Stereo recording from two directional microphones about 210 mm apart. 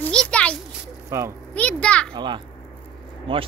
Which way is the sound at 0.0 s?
5° left (ahead or behind).